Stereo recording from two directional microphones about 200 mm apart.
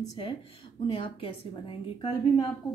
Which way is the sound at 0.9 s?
25° left (ahead or behind).